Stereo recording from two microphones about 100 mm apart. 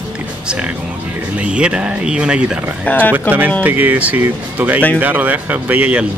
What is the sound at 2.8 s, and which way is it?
Speech, 15° left (ahead or behind).